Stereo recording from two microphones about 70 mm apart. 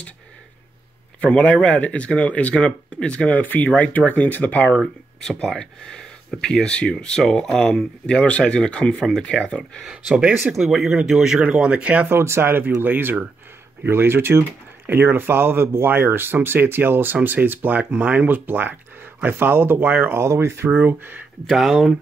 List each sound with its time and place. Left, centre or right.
1.2 s speech: centre
4.7 s speech: centre
9.8 s speech: centre
11.4 s speech: centre
12.1 s speech: right
20.2 s speech: right
21.5 s speech: centre